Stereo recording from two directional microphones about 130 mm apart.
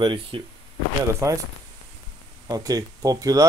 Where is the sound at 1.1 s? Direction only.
25° right (ahead or behind).